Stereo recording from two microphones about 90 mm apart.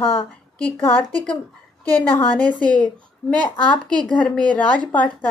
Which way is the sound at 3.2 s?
5° left (ahead or behind).